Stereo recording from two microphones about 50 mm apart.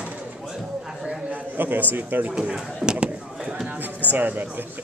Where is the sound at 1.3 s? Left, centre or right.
Right.